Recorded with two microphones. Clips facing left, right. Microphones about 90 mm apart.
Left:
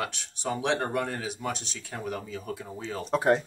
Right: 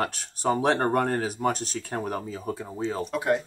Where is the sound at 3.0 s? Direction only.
30° left (ahead or behind).